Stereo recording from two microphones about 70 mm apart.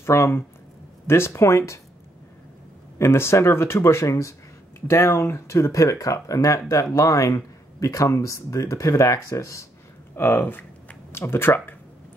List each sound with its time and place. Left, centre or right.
0.0 s speech: left
3.0 s speech: left
10.1 s speech: left